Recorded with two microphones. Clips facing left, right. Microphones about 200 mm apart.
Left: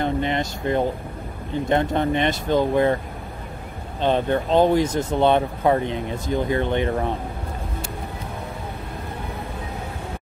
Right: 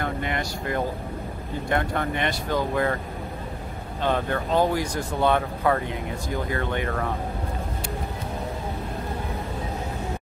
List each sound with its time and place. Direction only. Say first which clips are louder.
0.0 s speech: left 5 dB; 25° left (ahead or behind)
4.0 s speech: left 5 dB; 25° left (ahead or behind)